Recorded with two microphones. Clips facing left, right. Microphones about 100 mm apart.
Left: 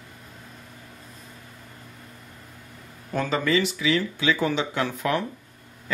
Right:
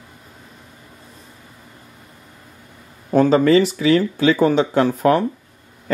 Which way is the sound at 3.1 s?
35° right (ahead or behind).